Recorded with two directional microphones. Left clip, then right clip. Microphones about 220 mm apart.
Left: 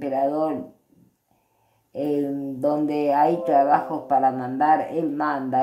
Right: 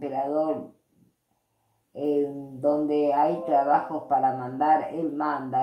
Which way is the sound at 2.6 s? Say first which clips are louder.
Left 1 dB; 40° left (ahead or behind).